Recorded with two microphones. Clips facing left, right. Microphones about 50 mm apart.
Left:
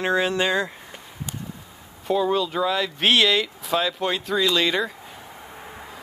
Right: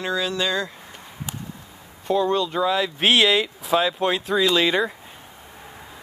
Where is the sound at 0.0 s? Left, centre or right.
Left.